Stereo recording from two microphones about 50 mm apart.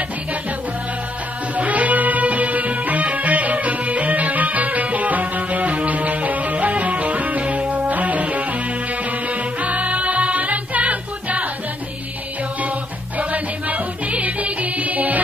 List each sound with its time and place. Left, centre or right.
1.5 s music: right
13.2 s music: right